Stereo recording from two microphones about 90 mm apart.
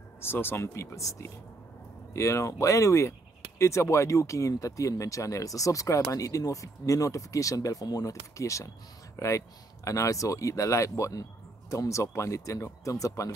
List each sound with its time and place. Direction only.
0.2 s speech: 25° left (ahead or behind)